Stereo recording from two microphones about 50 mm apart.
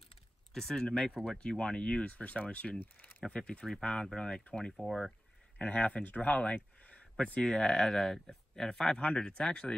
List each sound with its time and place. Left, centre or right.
0.5 s speech: centre; by 2.8 s left
2.8 s speech: left
3.3 s speech: centre
3.6 s speech: centre
5.6 s speech: left
6.3 s speech: centre
6.8 s a sound: left
7.4 s speech: centre